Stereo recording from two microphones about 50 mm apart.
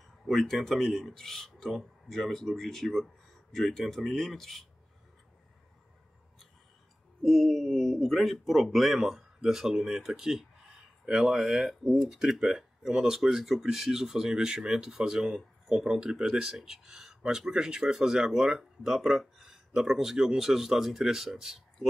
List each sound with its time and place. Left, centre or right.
0.2 s speech: centre
7.2 s speech: centre